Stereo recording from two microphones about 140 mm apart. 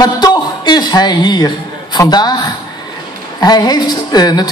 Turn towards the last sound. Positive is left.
turn(degrees=30)  # may be behind; listen again after turning